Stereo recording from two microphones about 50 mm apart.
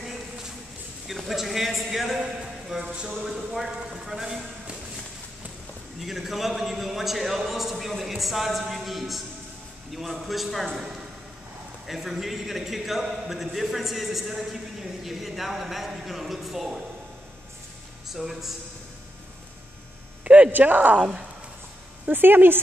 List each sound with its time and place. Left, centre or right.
1.0 s a man's voice: centre
2.1 s speech: centre
3.3 s speech: centre
5.9 s a man's voice: centre
18.1 s a man's voice: centre
20.2 s a sound: right
20.5 s a woman's voice: right
21.0 s speech: centre
22.1 s speech: right